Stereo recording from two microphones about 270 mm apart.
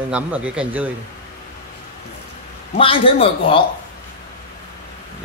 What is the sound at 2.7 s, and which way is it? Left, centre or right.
Speech, centre.